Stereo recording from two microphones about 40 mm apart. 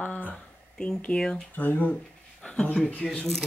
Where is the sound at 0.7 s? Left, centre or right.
Centre.